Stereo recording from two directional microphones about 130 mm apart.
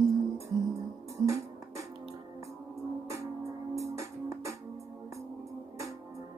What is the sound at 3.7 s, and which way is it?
Music, 25° right (ahead or behind).